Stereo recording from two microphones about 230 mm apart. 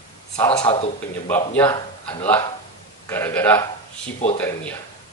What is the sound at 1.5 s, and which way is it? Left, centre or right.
Speech, centre.